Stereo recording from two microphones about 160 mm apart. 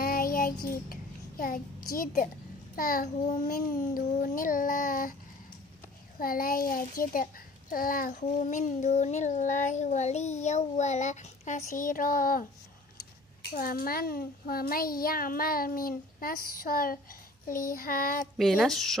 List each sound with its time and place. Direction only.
0.0 s child singing: 65° left (ahead or behind)
1.4 s a child's voice: 60° left (ahead or behind)
6.1 s a child's voice: 65° left (ahead or behind)
8.1 s a child's voice: 50° left (ahead or behind); by 18.2 s 65° left (ahead or behind)
18.4 s a woman's voice: centre (ahead or behind)